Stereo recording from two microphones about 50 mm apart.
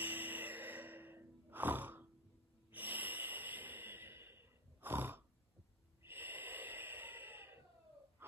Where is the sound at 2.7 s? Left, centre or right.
Right.